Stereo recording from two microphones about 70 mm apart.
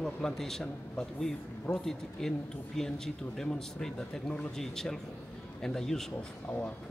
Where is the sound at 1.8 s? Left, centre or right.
Centre.